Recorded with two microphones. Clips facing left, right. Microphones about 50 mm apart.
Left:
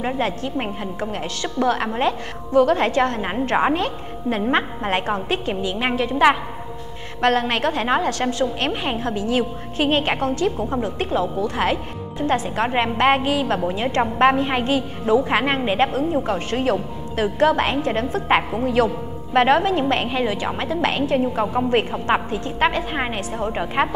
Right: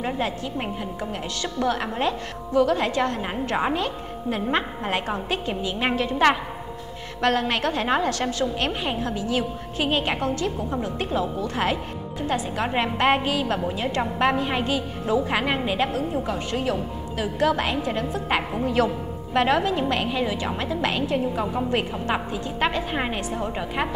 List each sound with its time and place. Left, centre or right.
0.9 s a woman's voice: left
12.2 s a woman's voice: left
12.4 s a woman's voice: left
19.3 s a woman's voice: left
22.8 s a woman's voice: centre